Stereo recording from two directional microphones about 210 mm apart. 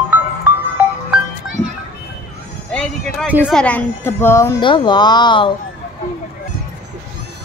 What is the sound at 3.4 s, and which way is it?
Speech, 5° left (ahead or behind).